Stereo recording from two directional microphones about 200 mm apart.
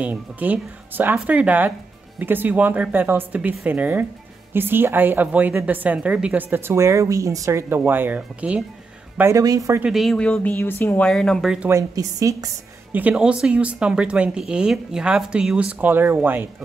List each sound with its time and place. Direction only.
0.0 s a woman's voice: 10° right (ahead or behind)
9.2 s a woman's voice: 15° right (ahead or behind)
9.8 s speech: centre (ahead or behind)
11.7 s a woman's voice: 15° right (ahead or behind)
12.9 s speech: 5° right (ahead or behind)